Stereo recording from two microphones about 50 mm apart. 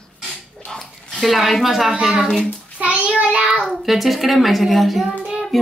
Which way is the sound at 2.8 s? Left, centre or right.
Right.